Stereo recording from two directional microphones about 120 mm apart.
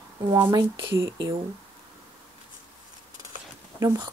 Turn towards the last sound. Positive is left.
turn(degrees=-30)  # may be behind; listen again after turning